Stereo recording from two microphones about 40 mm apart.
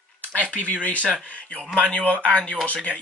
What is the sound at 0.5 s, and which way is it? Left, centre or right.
Speech, left.